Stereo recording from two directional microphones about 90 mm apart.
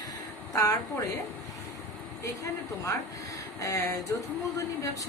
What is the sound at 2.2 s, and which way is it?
Speech, 35° left (ahead or behind).